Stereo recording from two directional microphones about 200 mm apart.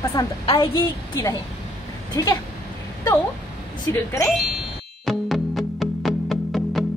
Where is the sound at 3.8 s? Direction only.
15° left (ahead or behind).